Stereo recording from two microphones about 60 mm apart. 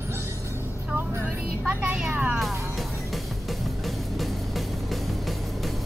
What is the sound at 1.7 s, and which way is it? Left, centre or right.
Speech, right.